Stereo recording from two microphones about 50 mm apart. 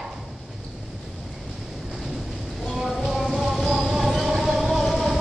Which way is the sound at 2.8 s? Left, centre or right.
Centre.